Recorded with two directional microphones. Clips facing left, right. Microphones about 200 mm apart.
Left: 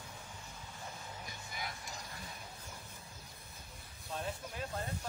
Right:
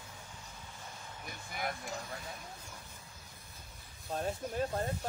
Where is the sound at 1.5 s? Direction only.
55° right (ahead or behind).